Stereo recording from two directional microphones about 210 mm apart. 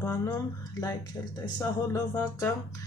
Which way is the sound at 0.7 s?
15° left (ahead or behind).